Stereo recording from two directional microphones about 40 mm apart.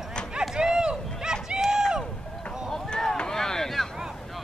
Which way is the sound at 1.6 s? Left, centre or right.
Centre.